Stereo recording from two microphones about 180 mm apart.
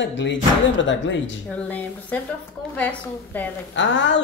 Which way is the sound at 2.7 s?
10° left (ahead or behind).